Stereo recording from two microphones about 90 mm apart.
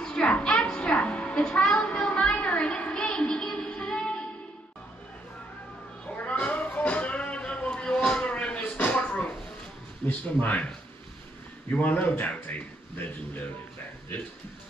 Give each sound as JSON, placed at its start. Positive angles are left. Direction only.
{"t": 0.0, "sound": "music", "side_deg": 10}
{"t": 6.1, "sound": "music", "side_deg": 20}
{"t": 10.0, "sound": "speech", "side_deg": 15}
{"t": 11.7, "sound": "a sound", "side_deg": 15}